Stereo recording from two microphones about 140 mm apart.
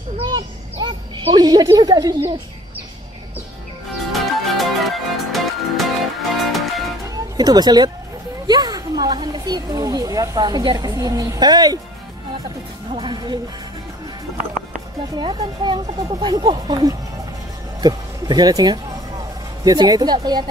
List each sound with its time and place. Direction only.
0.3 s a sound: 30° right (ahead or behind)
1.2 s speech: 30° right (ahead or behind)
4.1 s music: centre (ahead or behind)
7.3 s speech: 30° right (ahead or behind)
12.9 s speech: 35° right (ahead or behind)
15.1 s speech: 35° right (ahead or behind)